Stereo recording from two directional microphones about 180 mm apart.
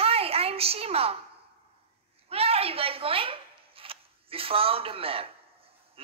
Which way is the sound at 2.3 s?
35° right (ahead or behind).